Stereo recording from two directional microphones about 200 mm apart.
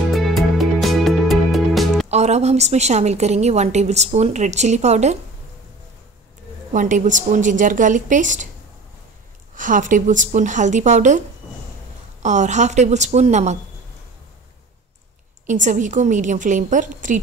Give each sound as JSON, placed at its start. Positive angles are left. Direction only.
{"t": 0.1, "sound": "music", "side_deg": 0}
{"t": 2.0, "sound": "a woman's voice", "side_deg": -35}
{"t": 6.7, "sound": "a woman's voice", "side_deg": -40}
{"t": 9.6, "sound": "a woman's voice", "side_deg": -40}
{"t": 15.4, "sound": "a woman's voice", "side_deg": -40}